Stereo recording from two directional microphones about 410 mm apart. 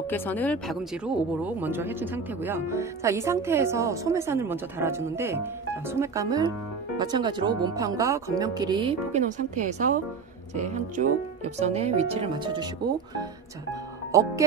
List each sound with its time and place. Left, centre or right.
0.0 s speech: centre